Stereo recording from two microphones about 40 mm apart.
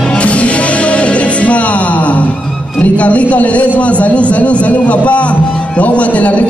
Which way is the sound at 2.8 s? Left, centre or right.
Left.